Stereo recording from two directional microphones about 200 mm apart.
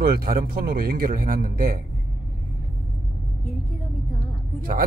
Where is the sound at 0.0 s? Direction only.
50° right (ahead or behind).